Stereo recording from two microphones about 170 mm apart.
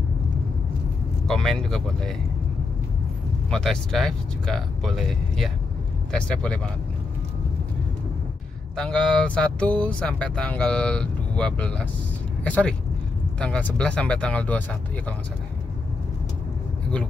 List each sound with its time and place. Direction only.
1.2 s speech: centre (ahead or behind)
3.4 s speech: 5° left (ahead or behind)
8.7 s speech: 5° left (ahead or behind)